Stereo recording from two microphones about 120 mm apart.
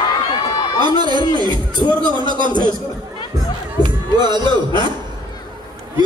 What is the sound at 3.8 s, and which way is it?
Speech, 40° right (ahead or behind).